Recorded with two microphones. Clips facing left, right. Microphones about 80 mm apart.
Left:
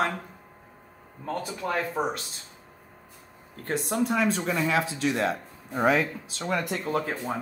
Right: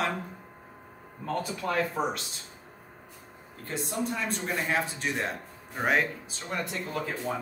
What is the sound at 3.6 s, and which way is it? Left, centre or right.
Speech, left.